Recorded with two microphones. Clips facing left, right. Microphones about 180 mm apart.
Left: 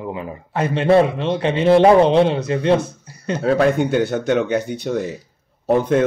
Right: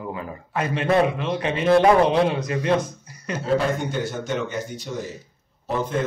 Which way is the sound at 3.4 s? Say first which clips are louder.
Left 6 dB; 65° left (ahead or behind).